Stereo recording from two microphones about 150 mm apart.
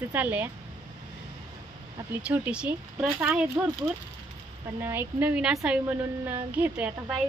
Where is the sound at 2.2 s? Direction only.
10° right (ahead or behind).